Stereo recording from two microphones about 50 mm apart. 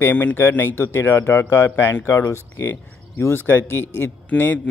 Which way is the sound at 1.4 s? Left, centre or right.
Left.